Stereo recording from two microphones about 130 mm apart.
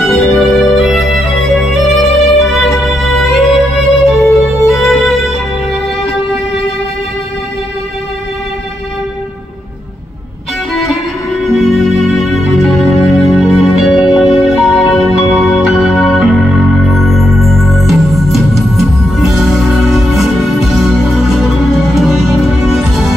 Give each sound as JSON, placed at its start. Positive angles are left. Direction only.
{"t": 0.0, "sound": "music", "side_deg": 0}
{"t": 10.7, "sound": "music", "side_deg": 0}
{"t": 12.9, "sound": "music", "side_deg": 50}
{"t": 13.7, "sound": "music", "side_deg": 0}